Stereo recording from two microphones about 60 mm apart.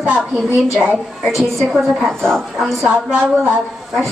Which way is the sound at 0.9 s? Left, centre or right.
Centre.